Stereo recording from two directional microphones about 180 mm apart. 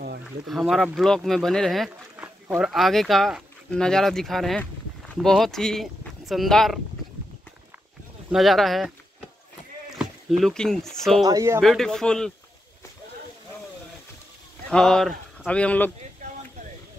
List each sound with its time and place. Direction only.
0.5 s speech: centre (ahead or behind)
8.3 s speech: centre (ahead or behind)
9.9 s speech: centre (ahead or behind)
11.2 s speech: 15° right (ahead or behind)
11.6 s speech: centre (ahead or behind)
14.7 s speech: 5° left (ahead or behind)